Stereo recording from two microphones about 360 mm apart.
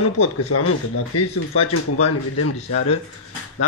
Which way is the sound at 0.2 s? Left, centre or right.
Left.